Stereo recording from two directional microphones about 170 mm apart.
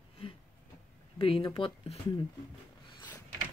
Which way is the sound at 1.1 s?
30° left (ahead or behind).